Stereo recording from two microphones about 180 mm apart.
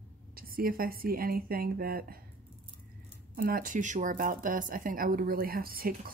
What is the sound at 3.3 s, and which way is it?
A woman's voice, 50° right (ahead or behind).